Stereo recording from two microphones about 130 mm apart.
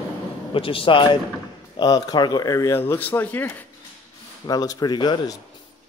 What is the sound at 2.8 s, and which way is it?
Speech, 15° left (ahead or behind).